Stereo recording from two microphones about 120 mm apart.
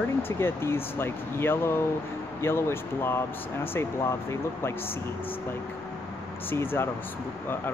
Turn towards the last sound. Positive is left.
turn(degrees=20)  # may be behind; listen again after turning